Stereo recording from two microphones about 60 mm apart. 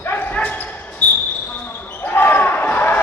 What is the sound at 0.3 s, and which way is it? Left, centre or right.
Basketball bounce, left.